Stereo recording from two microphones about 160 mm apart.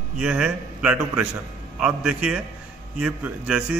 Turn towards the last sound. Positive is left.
turn(degrees=-5)  # may be behind; listen again after turning